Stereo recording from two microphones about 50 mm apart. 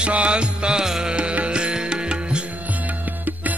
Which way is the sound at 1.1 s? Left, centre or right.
Right.